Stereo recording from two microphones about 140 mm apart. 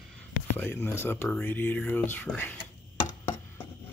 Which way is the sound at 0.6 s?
15° left (ahead or behind).